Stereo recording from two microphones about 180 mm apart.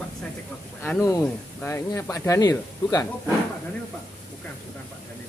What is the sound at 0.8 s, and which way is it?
Speech, 15° left (ahead or behind).